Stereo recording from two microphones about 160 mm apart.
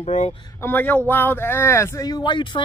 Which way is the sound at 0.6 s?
10° left (ahead or behind).